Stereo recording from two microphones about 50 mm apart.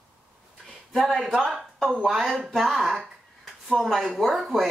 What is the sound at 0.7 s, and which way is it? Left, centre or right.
Speech, centre.